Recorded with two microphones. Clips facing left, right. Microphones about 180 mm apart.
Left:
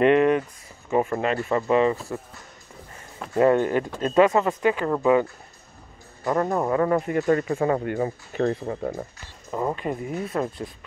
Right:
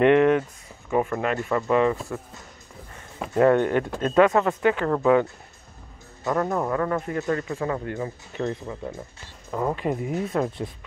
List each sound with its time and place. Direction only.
0.0 s speech: 15° left (ahead or behind)
1.2 s speech: 25° left (ahead or behind)
1.7 s speech: 10° left (ahead or behind)
3.3 s speech: 10° left (ahead or behind)
6.2 s speech: 10° left (ahead or behind)
7.2 s speech: 40° left (ahead or behind)
9.5 s speech: 5° left (ahead or behind)
9.8 s speech: 15° right (ahead or behind)
10.3 s speech: centre (ahead or behind)